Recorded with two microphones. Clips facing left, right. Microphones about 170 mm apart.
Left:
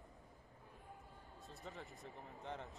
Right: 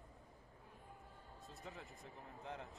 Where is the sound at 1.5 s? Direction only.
Centre (ahead or behind).